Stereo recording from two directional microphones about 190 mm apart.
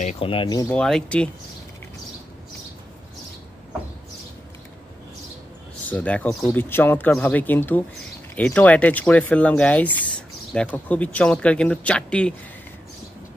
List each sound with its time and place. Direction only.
0.0 s speech: 30° left (ahead or behind)
0.7 s speech: 5° left (ahead or behind)
5.9 s speech: 5° left (ahead or behind)